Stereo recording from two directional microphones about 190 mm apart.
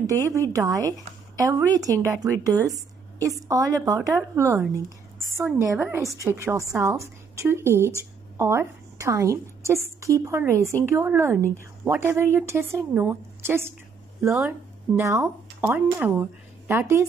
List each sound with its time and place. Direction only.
0.0 s a woman's voice: 15° right (ahead or behind)
15.0 s a woman's voice: 15° right (ahead or behind)